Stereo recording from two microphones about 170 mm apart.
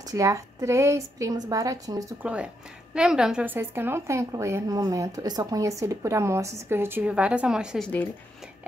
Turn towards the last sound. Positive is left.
turn(degrees=-5)  # may be behind; listen again after turning